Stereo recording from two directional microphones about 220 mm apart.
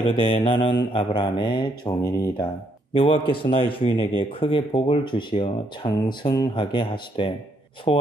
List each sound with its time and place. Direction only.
0.1 s speech: 25° left (ahead or behind)